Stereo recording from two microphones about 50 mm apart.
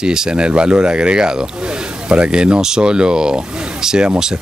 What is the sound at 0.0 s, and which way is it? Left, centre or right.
Speech, centre.